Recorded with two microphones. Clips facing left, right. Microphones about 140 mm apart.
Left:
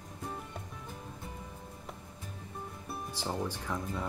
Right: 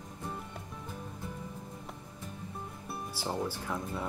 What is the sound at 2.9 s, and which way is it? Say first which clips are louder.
Music: right 1 dB; 10° right (ahead or behind).